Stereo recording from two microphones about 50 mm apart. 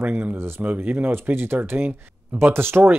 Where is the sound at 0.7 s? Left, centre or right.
Right.